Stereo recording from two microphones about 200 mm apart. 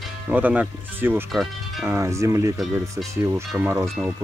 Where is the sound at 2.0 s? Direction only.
15° right (ahead or behind).